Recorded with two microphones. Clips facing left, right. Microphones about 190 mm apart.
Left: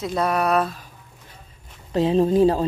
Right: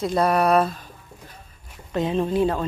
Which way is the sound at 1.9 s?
30° left (ahead or behind).